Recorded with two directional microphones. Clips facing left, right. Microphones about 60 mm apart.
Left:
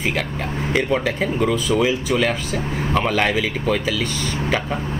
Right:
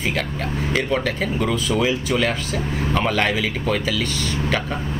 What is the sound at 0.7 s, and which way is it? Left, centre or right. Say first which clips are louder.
Speech: left 2 dB; centre.